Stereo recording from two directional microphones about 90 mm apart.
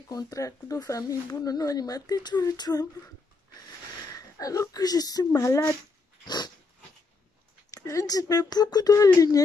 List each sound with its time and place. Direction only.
0.1 s speech: 40° left (ahead or behind)
4.1 s speech: 40° left (ahead or behind)
6.2 s dog: 55° left (ahead or behind)
7.7 s speech: 40° left (ahead or behind)